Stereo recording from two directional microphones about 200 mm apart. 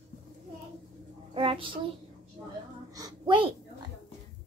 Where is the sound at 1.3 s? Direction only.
25° right (ahead or behind).